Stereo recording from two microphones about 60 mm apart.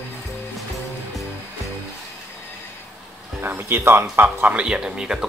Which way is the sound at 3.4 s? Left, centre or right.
Right.